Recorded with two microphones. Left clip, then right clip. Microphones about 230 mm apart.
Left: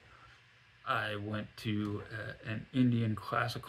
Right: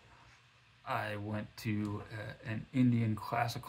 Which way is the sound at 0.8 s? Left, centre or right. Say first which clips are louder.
Left 3 dB; centre.